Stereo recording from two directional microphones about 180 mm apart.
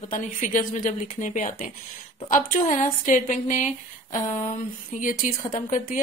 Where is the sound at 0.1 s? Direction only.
45° left (ahead or behind).